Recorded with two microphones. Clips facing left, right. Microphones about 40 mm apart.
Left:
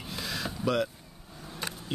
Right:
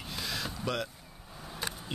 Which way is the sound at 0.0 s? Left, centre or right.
Centre.